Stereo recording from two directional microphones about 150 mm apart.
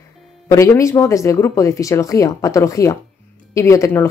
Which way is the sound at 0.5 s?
20° left (ahead or behind).